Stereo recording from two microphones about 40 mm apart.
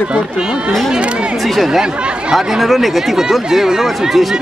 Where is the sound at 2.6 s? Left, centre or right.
Centre.